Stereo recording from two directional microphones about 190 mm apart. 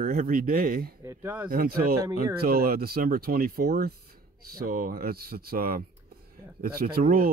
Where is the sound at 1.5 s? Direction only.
50° right (ahead or behind).